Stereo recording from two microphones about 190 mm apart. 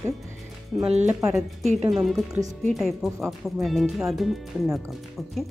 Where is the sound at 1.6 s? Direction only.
35° right (ahead or behind).